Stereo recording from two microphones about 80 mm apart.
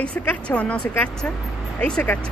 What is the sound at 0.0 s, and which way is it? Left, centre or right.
Speech, centre.